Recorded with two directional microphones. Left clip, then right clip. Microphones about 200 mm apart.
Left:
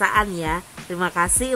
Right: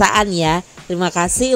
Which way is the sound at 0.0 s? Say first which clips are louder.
Right 6 dB; 30° right (ahead or behind).